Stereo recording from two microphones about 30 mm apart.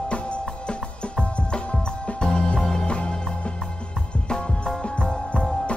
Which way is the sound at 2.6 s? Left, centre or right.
Centre.